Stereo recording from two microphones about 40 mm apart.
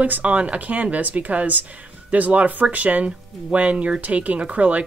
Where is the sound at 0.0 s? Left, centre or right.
Right.